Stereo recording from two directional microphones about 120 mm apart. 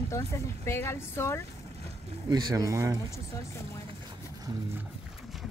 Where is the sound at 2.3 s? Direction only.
30° right (ahead or behind).